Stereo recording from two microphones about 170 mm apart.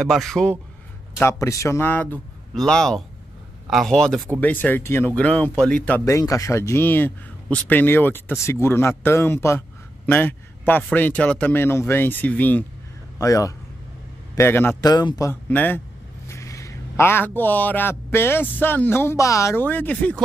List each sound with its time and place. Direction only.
0.0 s a man's voice: centre (ahead or behind)
1.1 s a man's voice: 15° left (ahead or behind)
10.0 s a sound: 10° left (ahead or behind)
10.8 s a man's voice: 10° left (ahead or behind)